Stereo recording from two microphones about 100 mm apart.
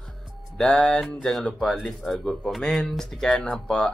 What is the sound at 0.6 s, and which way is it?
Speech, 5° left (ahead or behind).